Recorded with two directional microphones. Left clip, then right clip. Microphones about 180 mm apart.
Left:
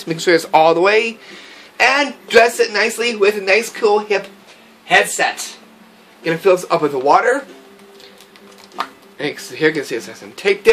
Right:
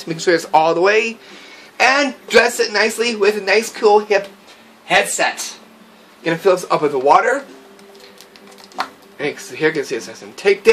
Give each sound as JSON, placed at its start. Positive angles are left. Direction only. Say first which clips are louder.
{"t": 0.0, "sound": "speech", "louder": "left 2 dB", "side_deg": 20}
{"t": 1.8, "sound": "speech", "louder": "even", "side_deg": 0}
{"t": 9.2, "sound": "speech", "louder": "left 1 dB", "side_deg": 15}